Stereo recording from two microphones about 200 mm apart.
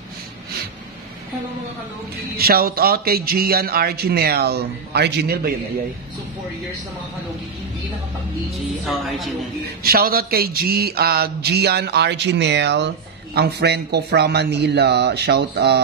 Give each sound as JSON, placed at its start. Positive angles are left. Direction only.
{"t": 2.3, "sound": "a man's voice", "side_deg": -50}
{"t": 8.5, "sound": "speech", "side_deg": 0}
{"t": 9.8, "sound": "speech", "side_deg": -50}